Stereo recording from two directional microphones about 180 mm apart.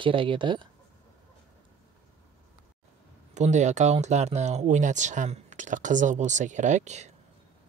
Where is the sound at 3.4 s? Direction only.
40° right (ahead or behind).